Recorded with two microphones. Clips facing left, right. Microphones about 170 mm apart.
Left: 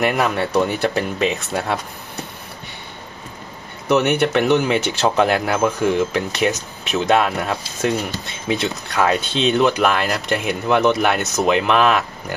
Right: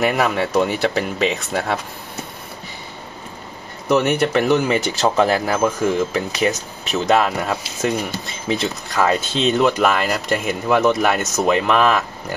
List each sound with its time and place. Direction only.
0.0 s speech: centre (ahead or behind)
3.9 s speech: centre (ahead or behind)